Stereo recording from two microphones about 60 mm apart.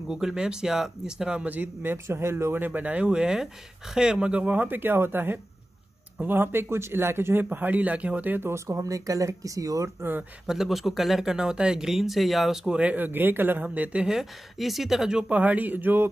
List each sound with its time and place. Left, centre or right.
0.1 s speech: centre
1.4 s a man's voice: right
3.1 s speech: centre
4.6 s a man's voice: right
8.4 s speech: right
10.4 s speech: centre
12.6 s speech: centre
12.9 s a man's voice: right
14.0 s speech: centre
15.3 s a man's voice: right